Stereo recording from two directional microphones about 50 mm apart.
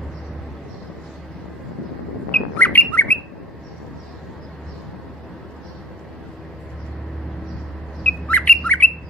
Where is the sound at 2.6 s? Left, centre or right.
Left.